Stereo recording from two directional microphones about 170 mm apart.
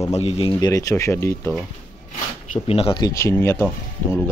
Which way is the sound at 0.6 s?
20° left (ahead or behind).